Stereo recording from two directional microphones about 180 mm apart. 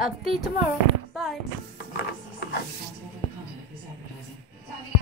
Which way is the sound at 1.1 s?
Centre (ahead or behind).